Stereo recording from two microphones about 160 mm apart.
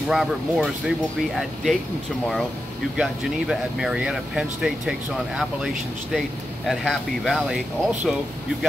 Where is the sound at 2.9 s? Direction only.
5° right (ahead or behind).